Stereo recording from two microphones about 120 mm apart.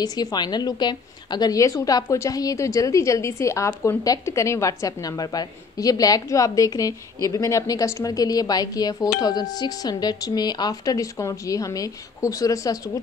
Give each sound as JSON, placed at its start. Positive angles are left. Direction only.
{"t": 0.0, "sound": "a woman's voice", "side_deg": 35}